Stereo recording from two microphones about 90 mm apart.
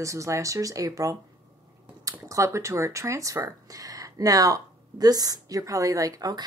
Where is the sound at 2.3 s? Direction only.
35° right (ahead or behind).